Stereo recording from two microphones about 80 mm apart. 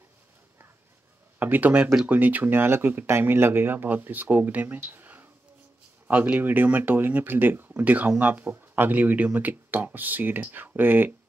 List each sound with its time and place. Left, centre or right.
1.4 s speech: right